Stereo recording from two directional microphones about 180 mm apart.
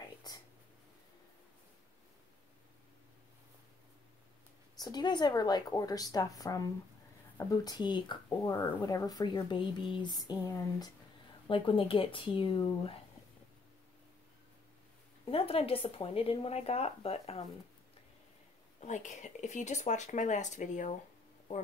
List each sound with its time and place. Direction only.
4.7 s speech: 25° left (ahead or behind)
15.2 s speech: 30° left (ahead or behind)
18.8 s speech: 40° left (ahead or behind)